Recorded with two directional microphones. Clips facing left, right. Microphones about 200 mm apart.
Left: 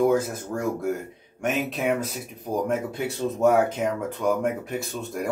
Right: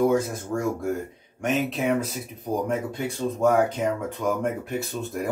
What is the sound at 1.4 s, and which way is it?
Speech, centre (ahead or behind).